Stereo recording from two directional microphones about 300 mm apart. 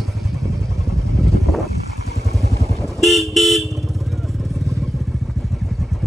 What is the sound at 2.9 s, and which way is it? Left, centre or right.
Vehicle, centre.